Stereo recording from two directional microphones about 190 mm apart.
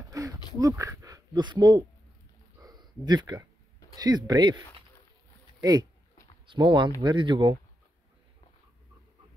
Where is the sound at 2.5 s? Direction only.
20° right (ahead or behind).